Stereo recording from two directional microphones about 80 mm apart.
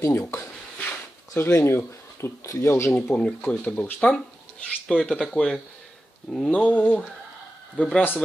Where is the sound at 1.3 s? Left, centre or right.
Left.